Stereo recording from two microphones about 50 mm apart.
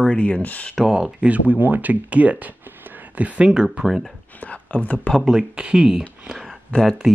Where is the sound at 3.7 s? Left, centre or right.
Centre.